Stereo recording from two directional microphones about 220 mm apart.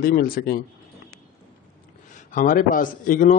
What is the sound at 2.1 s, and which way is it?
A man's voice, 35° left (ahead or behind).